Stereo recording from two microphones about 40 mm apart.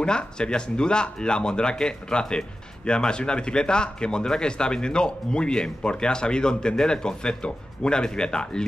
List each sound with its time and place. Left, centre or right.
0.0 s speech: left